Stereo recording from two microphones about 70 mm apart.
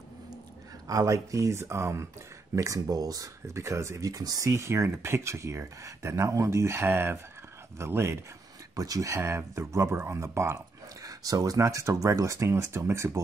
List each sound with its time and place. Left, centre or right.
0.8 s speech: right
2.5 s speech: right
8.7 s speech: right
11.1 s speech: right